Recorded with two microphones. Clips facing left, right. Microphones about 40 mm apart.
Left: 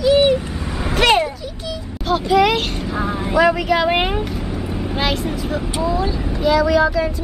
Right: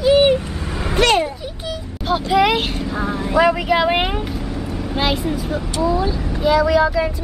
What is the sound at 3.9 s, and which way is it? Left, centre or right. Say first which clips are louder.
Vehicle: left 1 dB; centre.